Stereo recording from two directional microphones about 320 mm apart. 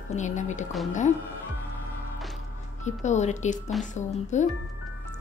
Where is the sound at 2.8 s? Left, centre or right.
Left.